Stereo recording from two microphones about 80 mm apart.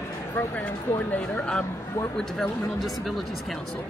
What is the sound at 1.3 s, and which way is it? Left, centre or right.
Speech, centre.